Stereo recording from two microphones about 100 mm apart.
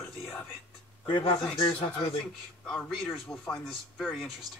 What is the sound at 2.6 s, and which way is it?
A man's voice, 5° left (ahead or behind).